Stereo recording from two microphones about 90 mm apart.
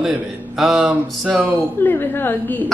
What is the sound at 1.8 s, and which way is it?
Speech, 25° left (ahead or behind).